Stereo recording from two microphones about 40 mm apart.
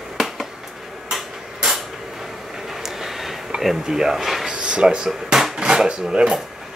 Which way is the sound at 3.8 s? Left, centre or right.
Centre.